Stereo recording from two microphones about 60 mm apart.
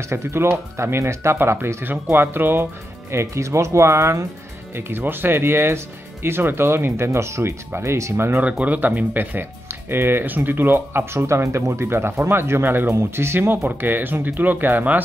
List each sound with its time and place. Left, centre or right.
0.0 s speech: right
4.7 s speech: right
8.4 s speech: right
11.4 s speech: right
13.7 s speech: right